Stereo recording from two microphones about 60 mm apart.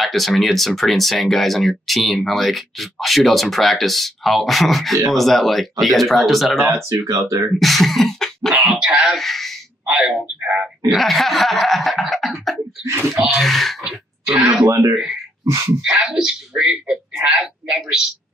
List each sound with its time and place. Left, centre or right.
0.0 s speech: centre
6.6 s speech: right
7.5 s cough: centre
8.5 s speech: centre
9.1 s speech: centre
9.8 s speech: centre
10.9 s snicker: centre
13.1 s speech: centre
14.2 s speech: centre
14.7 s speech: right
15.4 s a sound: right
15.8 s speech: centre